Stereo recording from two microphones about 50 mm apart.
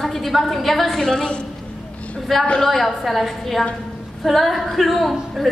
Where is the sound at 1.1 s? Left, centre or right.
Centre.